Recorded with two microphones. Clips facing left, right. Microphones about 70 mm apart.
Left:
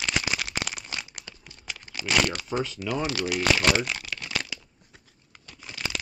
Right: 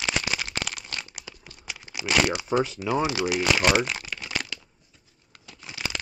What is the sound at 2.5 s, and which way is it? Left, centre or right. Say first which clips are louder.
Speech: right 4 dB; centre.